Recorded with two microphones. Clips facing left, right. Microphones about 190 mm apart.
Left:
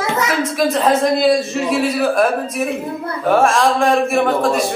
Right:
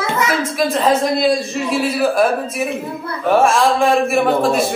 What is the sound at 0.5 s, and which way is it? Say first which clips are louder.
A man's voice: left 1 dB; centre (ahead or behind).